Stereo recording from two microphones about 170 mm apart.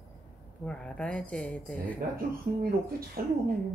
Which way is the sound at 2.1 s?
60° right (ahead or behind).